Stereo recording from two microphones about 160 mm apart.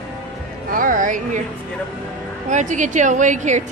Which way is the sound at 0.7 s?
55° right (ahead or behind).